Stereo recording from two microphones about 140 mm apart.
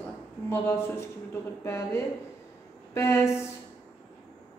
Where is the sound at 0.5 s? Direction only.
15° left (ahead or behind).